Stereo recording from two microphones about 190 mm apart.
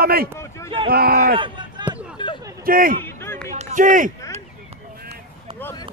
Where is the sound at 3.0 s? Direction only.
10° left (ahead or behind).